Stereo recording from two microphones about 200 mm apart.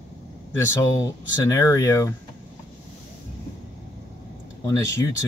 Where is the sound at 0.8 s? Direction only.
15° left (ahead or behind).